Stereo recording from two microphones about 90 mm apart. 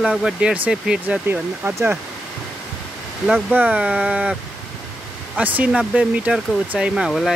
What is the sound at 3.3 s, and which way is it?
Speech, 10° right (ahead or behind).